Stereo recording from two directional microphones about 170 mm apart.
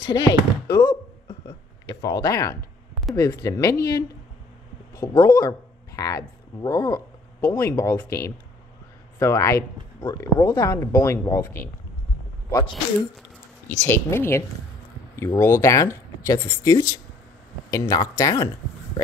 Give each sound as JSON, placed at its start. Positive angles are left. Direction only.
{"t": 0.0, "sound": "speech", "side_deg": 25}
{"t": 2.0, "sound": "a woman's voice", "side_deg": 20}
{"t": 13.7, "sound": "a woman's voice", "side_deg": 15}